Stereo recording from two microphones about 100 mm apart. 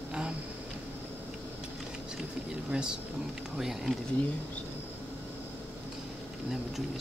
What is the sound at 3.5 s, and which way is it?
Speech, centre (ahead or behind).